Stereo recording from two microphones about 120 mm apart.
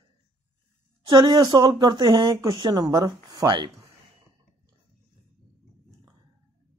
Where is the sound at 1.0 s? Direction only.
40° right (ahead or behind).